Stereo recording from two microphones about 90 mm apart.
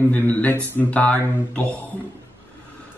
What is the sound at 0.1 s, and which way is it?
Speech, 15° left (ahead or behind).